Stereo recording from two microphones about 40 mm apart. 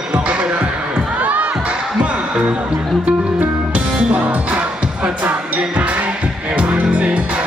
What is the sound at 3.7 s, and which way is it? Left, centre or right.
Music, right.